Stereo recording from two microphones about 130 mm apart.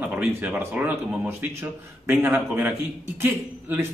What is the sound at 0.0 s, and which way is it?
Speech, 15° right (ahead or behind).